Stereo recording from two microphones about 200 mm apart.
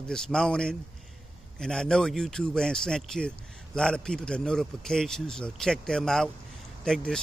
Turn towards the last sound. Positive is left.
turn(degrees=5)  # may be behind; listen again after turning